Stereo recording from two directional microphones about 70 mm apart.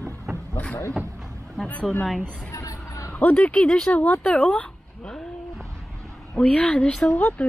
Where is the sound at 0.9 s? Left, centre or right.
Centre.